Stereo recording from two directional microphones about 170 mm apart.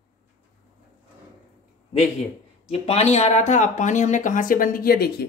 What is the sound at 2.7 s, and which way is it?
Speech, 35° left (ahead or behind).